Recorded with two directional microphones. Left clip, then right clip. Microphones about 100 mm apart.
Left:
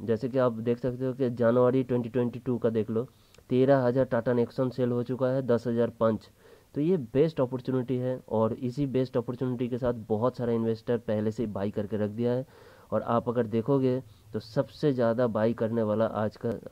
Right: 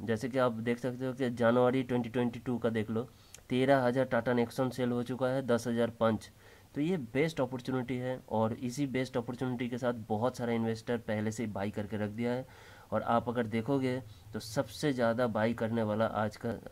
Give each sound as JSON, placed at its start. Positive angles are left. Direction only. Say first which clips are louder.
{"t": 0.0, "sound": "speech", "louder": "left 4 dB", "side_deg": 40}